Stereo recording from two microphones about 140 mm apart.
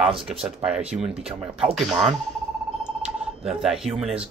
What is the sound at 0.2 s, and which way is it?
Speech, 5° right (ahead or behind).